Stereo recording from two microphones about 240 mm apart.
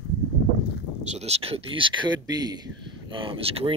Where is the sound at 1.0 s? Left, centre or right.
Right.